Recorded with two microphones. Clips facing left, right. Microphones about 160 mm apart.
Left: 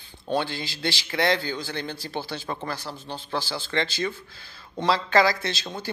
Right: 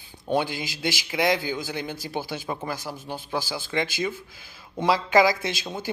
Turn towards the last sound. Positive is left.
turn(degrees=-15)  # may be behind; listen again after turning